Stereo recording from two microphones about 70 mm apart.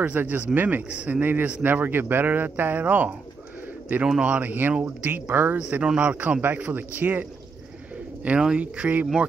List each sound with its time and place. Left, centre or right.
0.0 s speech: right
5.6 s speech: centre
8.4 s speech: centre